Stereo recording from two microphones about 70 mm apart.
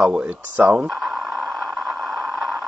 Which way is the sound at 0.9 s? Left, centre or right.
Centre.